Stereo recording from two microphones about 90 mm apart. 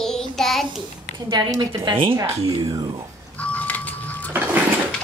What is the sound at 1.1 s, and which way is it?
Speech, 50° right (ahead or behind).